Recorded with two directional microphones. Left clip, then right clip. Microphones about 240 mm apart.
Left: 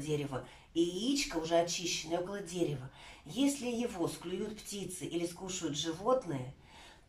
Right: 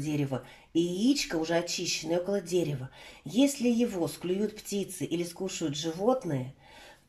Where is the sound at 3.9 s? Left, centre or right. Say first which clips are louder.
Right 6 dB; right.